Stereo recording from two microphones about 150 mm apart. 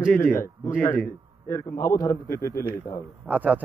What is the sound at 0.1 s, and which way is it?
A man's voice, 15° left (ahead or behind).